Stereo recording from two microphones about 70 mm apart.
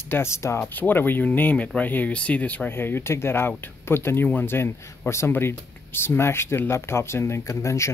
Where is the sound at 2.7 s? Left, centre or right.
Left.